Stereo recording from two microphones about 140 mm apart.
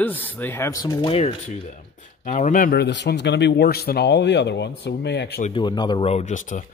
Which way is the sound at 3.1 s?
90° left.